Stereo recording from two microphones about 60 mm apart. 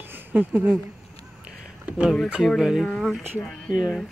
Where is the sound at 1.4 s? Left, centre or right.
Centre.